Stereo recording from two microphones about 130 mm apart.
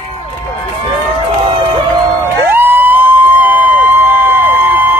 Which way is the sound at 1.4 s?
40° right (ahead or behind).